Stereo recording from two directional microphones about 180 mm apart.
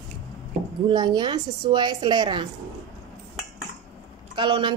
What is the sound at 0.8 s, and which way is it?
A woman's voice, 25° right (ahead or behind).